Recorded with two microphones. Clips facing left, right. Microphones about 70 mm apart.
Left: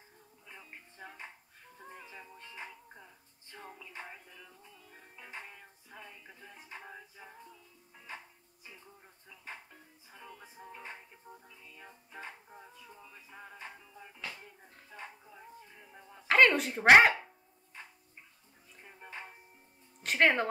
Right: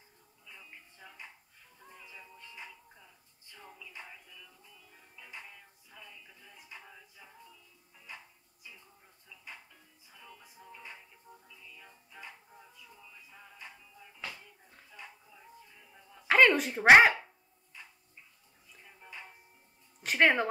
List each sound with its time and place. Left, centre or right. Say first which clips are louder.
0.5 s music: left 1 dB; left
9.3 s music: left 3 dB; left
14.3 s a sound: left 2 dB; left
16.3 s speech: right 1 dB; centre
18.7 s music: left 2 dB; left
20.0 s a sound: right 1 dB; centre